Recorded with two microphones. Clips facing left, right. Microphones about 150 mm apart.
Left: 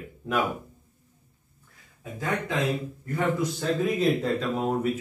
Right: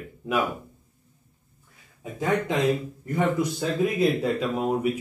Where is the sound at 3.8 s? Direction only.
10° right (ahead or behind).